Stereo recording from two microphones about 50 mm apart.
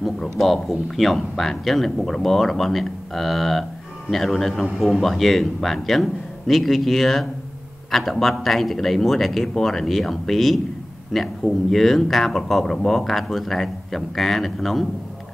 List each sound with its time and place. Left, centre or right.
0.0 s speech: centre